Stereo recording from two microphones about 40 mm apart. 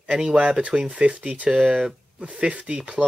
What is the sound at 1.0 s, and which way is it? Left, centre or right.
Speech, right.